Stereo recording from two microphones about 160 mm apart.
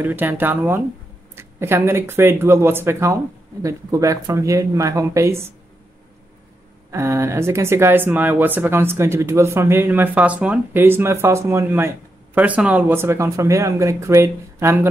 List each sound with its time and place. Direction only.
0.0 s speech: 10° right (ahead or behind)
6.9 s speech: 15° right (ahead or behind)